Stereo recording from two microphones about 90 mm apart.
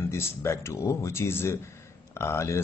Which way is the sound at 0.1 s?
30° left (ahead or behind).